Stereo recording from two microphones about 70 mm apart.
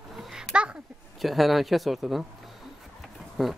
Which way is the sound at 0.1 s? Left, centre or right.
Centre.